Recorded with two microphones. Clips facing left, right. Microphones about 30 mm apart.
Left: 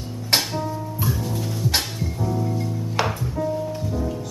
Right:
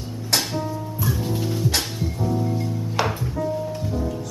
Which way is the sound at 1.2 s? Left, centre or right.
Centre.